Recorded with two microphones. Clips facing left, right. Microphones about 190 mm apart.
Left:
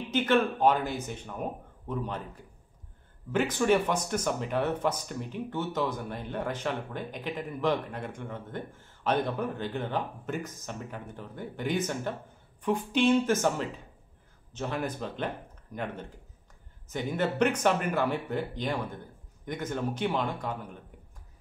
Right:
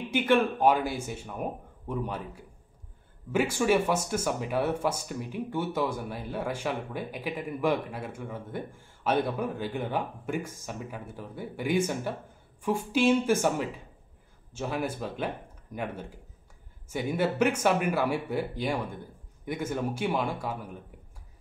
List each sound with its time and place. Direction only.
0.1 s speech: 10° right (ahead or behind)